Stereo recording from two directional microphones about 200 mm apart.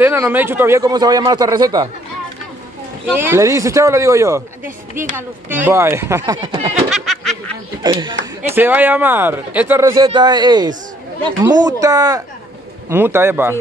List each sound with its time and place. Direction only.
0.0 s speech: 10° right (ahead or behind)
3.2 s speech: 15° right (ahead or behind)
6.3 s speech: 25° right (ahead or behind)
6.7 s snicker: centre (ahead or behind)
7.8 s speech: 20° right (ahead or behind)
8.4 s speech: 10° right (ahead or behind)